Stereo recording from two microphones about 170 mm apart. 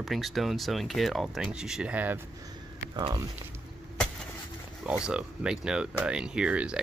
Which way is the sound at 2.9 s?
25° right (ahead or behind).